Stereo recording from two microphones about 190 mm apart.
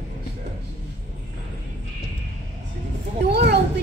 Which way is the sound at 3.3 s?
65° right (ahead or behind).